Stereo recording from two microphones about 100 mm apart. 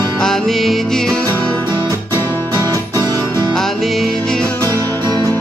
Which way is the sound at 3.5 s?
Centre (ahead or behind).